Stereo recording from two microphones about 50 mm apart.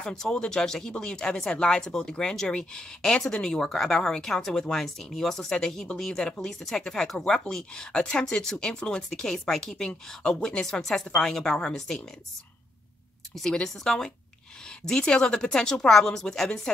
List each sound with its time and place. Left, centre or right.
0.0 s speech: centre
13.3 s speech: centre